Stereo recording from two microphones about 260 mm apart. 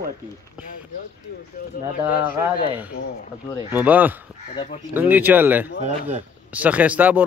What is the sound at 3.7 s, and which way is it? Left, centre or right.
A man's voice, centre.